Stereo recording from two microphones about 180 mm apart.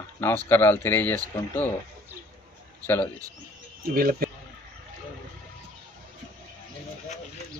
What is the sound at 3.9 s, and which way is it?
Speech, 55° right (ahead or behind).